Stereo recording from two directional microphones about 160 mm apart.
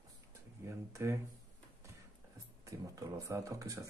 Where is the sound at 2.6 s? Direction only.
20° right (ahead or behind).